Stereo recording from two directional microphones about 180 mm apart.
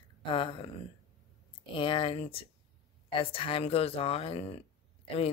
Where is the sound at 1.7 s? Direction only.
30° left (ahead or behind).